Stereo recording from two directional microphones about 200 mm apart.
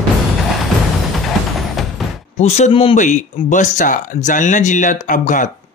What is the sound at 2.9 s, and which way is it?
Speech, 40° left (ahead or behind).